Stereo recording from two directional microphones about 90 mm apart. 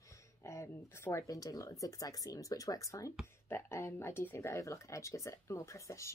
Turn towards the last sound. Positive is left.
turn(degrees=35)  # may be behind; listen again after turning